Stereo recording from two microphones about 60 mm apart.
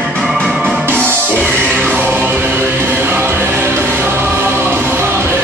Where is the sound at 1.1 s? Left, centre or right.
Right.